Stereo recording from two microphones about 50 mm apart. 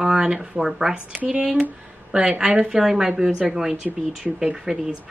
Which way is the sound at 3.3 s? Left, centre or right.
Right.